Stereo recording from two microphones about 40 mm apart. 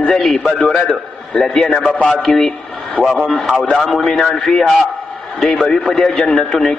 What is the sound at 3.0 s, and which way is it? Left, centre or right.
A man's voice, centre.